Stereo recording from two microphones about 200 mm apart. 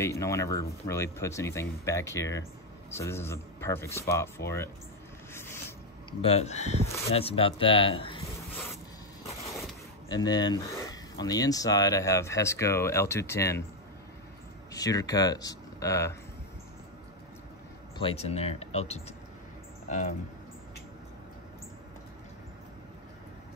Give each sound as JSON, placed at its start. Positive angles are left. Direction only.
{"t": 0.0, "sound": "speech", "side_deg": 15}
{"t": 4.4, "sound": "speech", "side_deg": 55}
{"t": 5.3, "sound": "a sound", "side_deg": 10}
{"t": 6.2, "sound": "speech", "side_deg": 30}
{"t": 10.0, "sound": "speech", "side_deg": 20}
{"t": 14.7, "sound": "speech", "side_deg": 15}
{"t": 17.9, "sound": "speech", "side_deg": 30}